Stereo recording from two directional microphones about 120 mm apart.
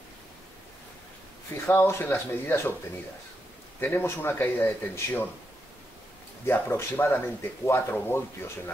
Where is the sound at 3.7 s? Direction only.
20° left (ahead or behind).